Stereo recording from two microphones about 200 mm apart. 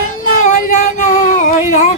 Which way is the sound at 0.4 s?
40° left (ahead or behind).